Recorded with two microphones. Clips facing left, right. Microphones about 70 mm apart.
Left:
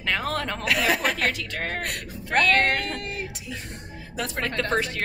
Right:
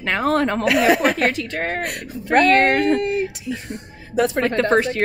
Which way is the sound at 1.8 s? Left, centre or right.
Centre.